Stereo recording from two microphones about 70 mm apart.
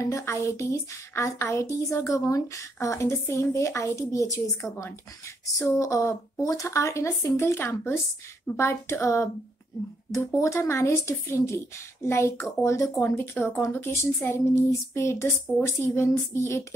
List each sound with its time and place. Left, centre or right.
0.0 s speech: left
5.6 s speech: left
13.0 s speech: left